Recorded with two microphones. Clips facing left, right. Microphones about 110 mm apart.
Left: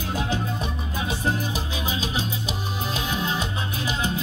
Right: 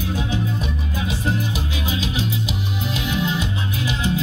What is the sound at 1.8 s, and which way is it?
Music, 35° left (ahead or behind).